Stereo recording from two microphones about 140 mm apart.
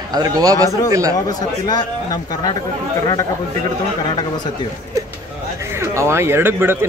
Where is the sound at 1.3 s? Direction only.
30° left (ahead or behind).